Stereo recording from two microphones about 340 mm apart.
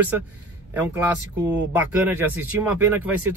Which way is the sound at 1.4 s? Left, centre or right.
Centre.